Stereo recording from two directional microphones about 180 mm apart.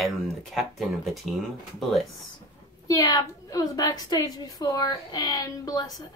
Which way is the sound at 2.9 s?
20° left (ahead or behind).